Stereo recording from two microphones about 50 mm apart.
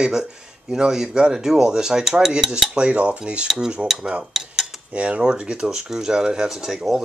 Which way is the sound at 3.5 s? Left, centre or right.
Centre.